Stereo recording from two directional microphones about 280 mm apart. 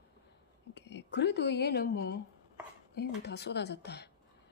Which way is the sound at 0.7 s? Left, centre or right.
Left.